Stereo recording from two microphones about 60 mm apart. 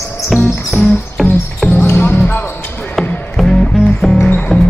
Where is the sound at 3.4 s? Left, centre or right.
Centre.